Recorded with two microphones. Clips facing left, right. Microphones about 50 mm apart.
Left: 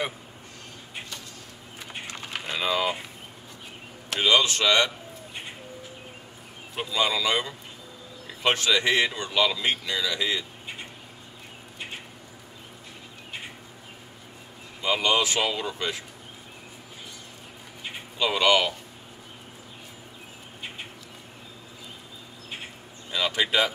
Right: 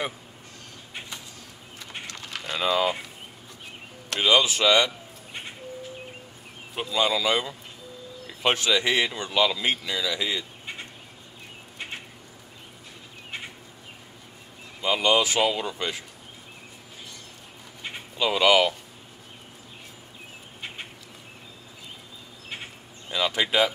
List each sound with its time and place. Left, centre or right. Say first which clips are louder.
1.8 s a sound: left 1 dB; centre
2.6 s speech: right 3 dB; centre
4.1 s speech: right 1 dB; centre
6.7 s speech: right 1 dB; centre
14.8 s speech: right 2 dB; centre
18.1 s speech: right 2 dB; centre
23.1 s speech: right 1 dB; centre